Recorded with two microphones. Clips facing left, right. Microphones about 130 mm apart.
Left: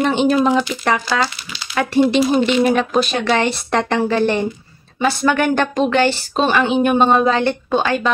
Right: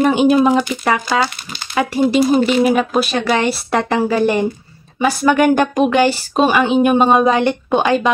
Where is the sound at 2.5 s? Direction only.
5° right (ahead or behind).